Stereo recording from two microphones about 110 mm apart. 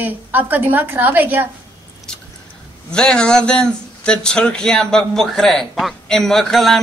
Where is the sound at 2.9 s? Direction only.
10° left (ahead or behind).